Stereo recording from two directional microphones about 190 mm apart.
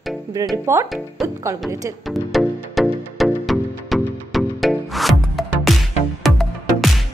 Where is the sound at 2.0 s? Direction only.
Centre (ahead or behind).